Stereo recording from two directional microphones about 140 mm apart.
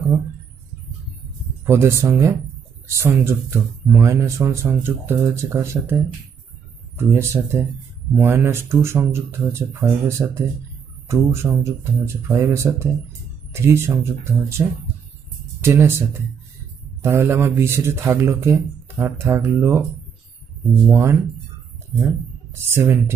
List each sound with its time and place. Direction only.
1.7 s speech: 20° right (ahead or behind)
20.9 s speech: 15° right (ahead or behind)